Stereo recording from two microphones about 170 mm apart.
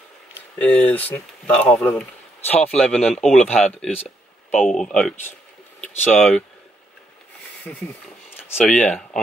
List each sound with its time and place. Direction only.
0.6 s speech: 10° left (ahead or behind)
5.8 s a sound: 10° left (ahead or behind)
7.7 s speech: 5° left (ahead or behind)